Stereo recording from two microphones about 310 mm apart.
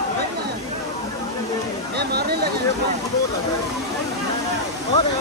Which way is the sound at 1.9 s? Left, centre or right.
Right.